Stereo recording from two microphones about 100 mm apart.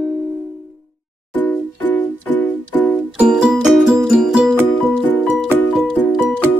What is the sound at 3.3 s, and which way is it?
Music, 5° right (ahead or behind).